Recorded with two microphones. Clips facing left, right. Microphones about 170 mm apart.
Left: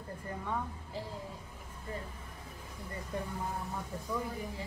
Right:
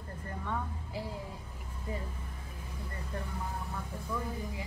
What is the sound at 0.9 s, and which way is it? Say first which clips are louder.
Speech: right 2 dB; 10° right (ahead or behind).